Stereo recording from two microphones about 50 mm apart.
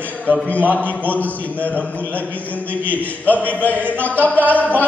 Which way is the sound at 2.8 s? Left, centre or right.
Left.